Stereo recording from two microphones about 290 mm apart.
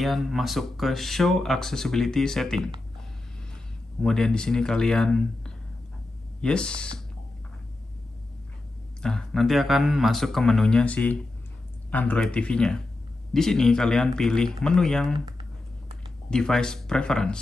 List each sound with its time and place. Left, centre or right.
0.0 s speech: centre
4.0 s speech: centre
9.0 s speech: centre
15.1 s speech: centre
16.3 s speech: centre